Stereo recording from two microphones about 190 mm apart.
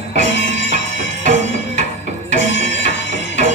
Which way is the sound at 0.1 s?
70° left (ahead or behind).